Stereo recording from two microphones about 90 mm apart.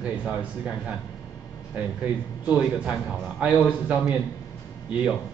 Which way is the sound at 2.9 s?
15° right (ahead or behind).